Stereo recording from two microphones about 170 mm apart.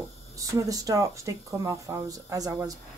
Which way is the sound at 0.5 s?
20° right (ahead or behind).